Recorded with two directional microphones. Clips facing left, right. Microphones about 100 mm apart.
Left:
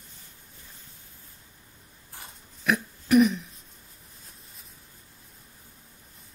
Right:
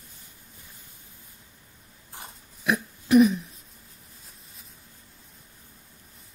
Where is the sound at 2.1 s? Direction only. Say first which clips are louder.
Right 3 dB; 15° right (ahead or behind).